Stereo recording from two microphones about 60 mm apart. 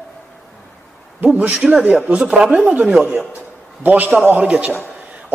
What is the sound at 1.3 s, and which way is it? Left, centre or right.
Speech, right.